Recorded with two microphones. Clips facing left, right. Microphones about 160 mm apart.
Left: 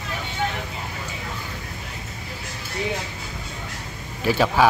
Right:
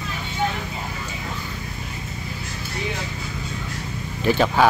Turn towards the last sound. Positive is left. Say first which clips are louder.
# right 1 dB
turn(degrees=5)  # may be behind; listen again after turning